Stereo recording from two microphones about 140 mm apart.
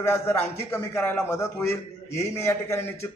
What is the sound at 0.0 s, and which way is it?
A man's voice, 15° left (ahead or behind).